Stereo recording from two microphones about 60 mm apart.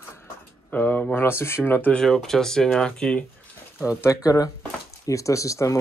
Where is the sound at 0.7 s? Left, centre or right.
Left.